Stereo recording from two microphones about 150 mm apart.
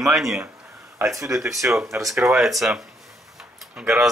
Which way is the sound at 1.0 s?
20° right (ahead or behind).